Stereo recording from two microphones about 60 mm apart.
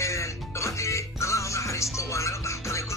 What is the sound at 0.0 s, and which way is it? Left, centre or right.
Music, left.